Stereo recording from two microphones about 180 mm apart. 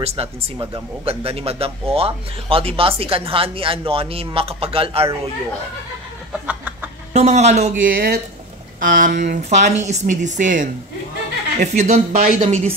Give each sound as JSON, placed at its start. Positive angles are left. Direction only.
{"t": 0.0, "sound": "speech", "side_deg": -35}
{"t": 6.4, "sound": "chicken", "side_deg": -10}
{"t": 7.2, "sound": "speech", "side_deg": -40}
{"t": 7.9, "sound": "speech", "side_deg": -55}